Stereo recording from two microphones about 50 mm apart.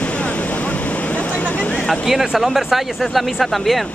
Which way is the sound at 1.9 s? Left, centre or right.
Centre.